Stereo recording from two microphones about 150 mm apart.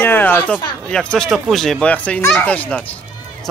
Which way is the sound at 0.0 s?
15° left (ahead or behind).